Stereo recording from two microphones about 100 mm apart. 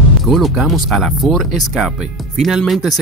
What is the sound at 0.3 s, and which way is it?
Speech, centre (ahead or behind).